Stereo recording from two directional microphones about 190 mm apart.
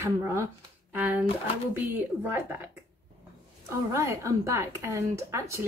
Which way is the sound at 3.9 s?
15° right (ahead or behind).